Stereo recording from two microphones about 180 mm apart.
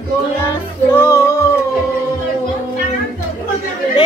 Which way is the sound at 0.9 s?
15° left (ahead or behind).